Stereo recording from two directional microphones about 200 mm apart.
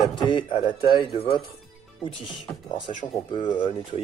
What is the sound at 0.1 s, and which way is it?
Speech, 20° left (ahead or behind).